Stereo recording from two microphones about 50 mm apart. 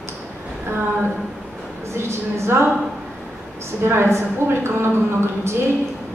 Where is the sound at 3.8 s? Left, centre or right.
Right.